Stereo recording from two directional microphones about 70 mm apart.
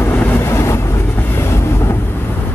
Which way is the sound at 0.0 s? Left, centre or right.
Left.